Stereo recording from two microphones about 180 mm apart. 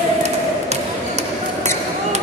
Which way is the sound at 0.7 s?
40° right (ahead or behind).